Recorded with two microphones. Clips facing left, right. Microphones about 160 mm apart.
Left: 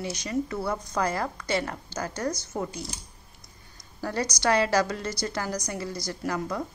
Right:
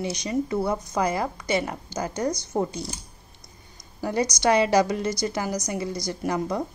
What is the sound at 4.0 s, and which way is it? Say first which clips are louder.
A woman's voice: right 4 dB; 15° right (ahead or behind).